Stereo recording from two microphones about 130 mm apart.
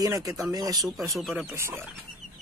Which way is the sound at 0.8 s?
Centre (ahead or behind).